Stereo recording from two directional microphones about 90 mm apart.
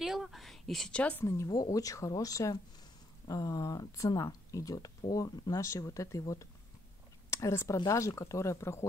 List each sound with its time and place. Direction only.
0.0 s a sound: centre (ahead or behind)
1.2 s speech: 30° left (ahead or behind)
1.5 s speech: 40° left (ahead or behind)